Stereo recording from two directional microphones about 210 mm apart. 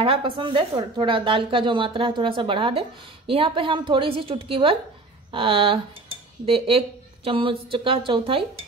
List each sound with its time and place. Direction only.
0.0 s a woman's voice: 25° right (ahead or behind)